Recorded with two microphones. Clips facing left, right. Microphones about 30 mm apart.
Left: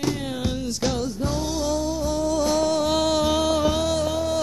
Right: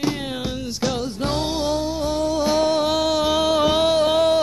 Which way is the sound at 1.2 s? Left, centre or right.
Right.